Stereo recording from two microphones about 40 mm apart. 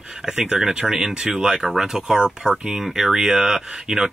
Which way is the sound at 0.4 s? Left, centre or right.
Centre.